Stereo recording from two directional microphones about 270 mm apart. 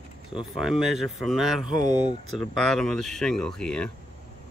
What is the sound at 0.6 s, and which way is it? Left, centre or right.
Speech, centre.